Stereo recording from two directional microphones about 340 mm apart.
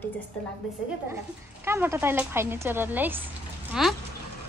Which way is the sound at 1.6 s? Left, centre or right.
Centre.